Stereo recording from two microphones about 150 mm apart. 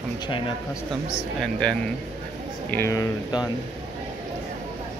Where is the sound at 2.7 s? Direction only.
20° left (ahead or behind).